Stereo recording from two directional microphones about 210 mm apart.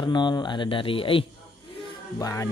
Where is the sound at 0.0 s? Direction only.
20° left (ahead or behind).